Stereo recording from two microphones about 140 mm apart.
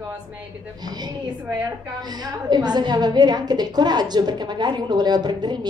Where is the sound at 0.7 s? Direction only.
30° right (ahead or behind).